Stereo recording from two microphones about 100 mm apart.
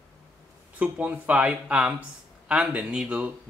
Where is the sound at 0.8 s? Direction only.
15° right (ahead or behind).